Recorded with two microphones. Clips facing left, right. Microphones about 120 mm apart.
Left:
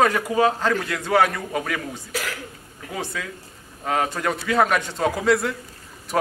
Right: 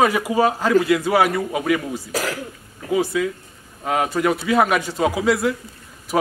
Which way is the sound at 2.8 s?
5° right (ahead or behind).